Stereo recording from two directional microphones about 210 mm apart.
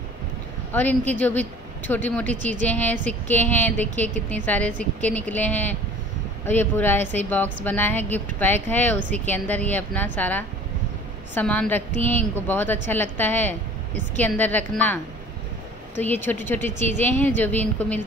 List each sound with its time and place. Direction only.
0.7 s a woman's voice: 10° left (ahead or behind)
16.0 s a woman's voice: 10° left (ahead or behind)